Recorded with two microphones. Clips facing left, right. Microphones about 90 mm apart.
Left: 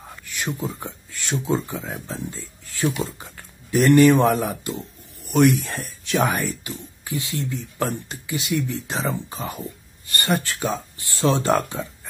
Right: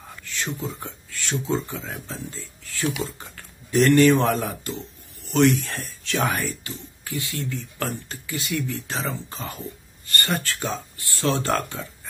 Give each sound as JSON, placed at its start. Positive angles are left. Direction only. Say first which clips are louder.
{"t": 0.1, "sound": "speech", "louder": "left 2 dB", "side_deg": 15}